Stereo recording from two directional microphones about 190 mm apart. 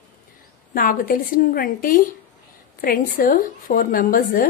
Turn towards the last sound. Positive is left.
turn(degrees=45)  # may be behind; listen again after turning